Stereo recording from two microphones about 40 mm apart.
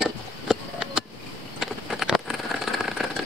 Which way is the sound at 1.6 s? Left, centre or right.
Centre.